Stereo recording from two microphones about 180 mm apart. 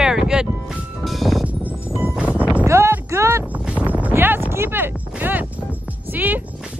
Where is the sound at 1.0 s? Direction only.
Centre (ahead or behind).